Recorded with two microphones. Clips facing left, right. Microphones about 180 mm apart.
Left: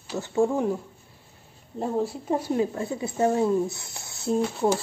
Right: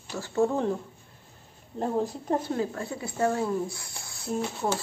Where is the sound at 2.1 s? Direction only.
10° left (ahead or behind).